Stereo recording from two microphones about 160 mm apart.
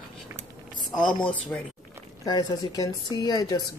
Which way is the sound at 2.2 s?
25° left (ahead or behind).